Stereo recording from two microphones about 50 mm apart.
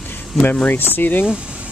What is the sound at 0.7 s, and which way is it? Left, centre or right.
Speech, left.